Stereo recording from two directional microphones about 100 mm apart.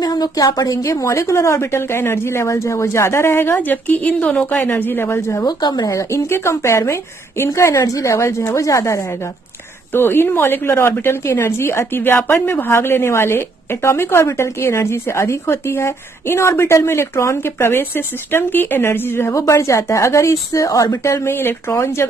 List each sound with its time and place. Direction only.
0.0 s speech: 40° left (ahead or behind); by 5.4 s 25° left (ahead or behind)
5.4 s speech: 45° left (ahead or behind); by 22.0 s 25° left (ahead or behind)